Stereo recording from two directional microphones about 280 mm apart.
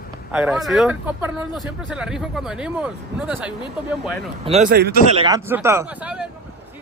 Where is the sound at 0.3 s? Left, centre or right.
Centre.